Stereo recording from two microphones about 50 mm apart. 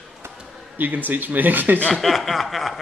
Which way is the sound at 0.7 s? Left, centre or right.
Right.